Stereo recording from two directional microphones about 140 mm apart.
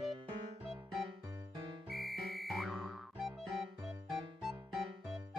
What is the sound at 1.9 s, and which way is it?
Music, centre (ahead or behind).